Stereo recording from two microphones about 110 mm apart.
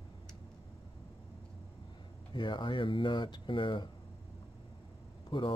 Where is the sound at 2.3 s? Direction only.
45° left (ahead or behind).